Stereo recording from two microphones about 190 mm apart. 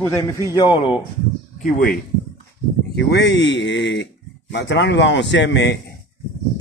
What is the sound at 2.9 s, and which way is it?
Speech, 60° left (ahead or behind).